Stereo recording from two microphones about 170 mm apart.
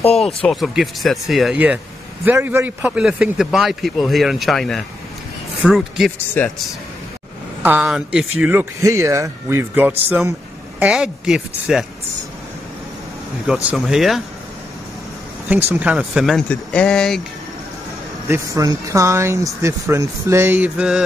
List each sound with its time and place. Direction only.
0.0 s speech: 35° left (ahead or behind)
0.5 s a man's voice: centre (ahead or behind)
7.6 s a man's voice: 5° right (ahead or behind)
13.5 s a man's voice: 5° right (ahead or behind)
15.4 s a man's voice: 10° right (ahead or behind)
18.3 s speech: 20° right (ahead or behind)